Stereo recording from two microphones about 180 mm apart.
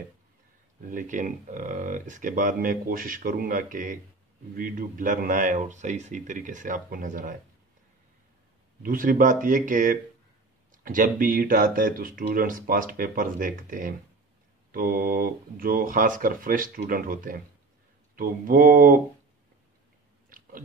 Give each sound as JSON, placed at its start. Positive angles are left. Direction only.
{"t": 0.9, "sound": "speech", "side_deg": -45}
{"t": 8.8, "sound": "speech", "side_deg": -50}
{"t": 20.2, "sound": "biting", "side_deg": -50}